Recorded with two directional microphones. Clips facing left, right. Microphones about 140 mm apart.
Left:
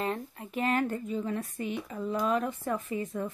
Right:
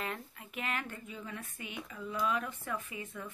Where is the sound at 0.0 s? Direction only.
35° left (ahead or behind).